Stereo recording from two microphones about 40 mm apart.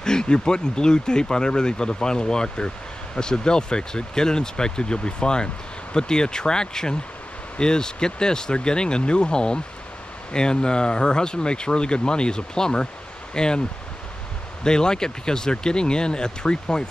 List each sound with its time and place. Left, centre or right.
0.0 s speech: centre
14.6 s speech: centre